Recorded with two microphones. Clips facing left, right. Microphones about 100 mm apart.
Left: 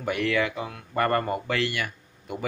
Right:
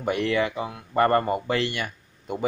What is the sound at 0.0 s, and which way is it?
Speech, 25° right (ahead or behind).